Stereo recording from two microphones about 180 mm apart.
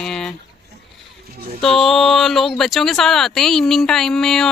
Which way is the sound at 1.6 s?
Centre (ahead or behind).